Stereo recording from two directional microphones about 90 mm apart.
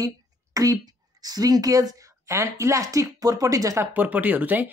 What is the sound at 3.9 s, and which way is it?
Speech, 20° right (ahead or behind).